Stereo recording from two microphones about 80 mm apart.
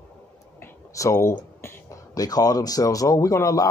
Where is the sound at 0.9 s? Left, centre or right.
Left.